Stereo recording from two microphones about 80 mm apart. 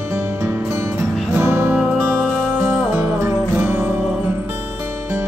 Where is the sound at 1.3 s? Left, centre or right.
Right.